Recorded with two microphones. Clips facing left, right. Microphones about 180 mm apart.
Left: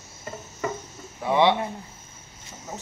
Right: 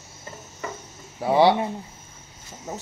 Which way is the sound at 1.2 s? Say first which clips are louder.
Right 3 dB; 35° right (ahead or behind).